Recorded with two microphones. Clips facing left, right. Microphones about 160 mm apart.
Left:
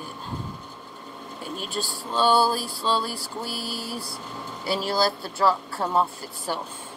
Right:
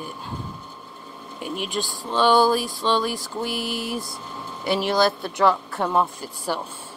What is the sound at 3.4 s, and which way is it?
Speech, 15° right (ahead or behind).